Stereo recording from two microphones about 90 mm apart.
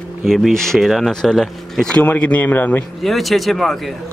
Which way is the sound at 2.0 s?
20° left (ahead or behind).